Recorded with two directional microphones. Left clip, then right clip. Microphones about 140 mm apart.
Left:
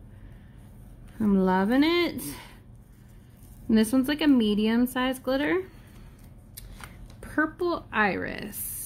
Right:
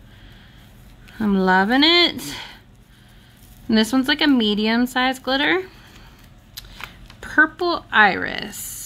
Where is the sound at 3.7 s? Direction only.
25° right (ahead or behind).